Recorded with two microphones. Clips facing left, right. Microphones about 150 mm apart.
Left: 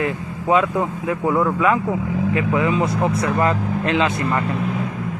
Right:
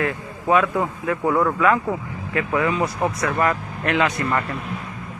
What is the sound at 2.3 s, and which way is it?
Speech, 20° left (ahead or behind).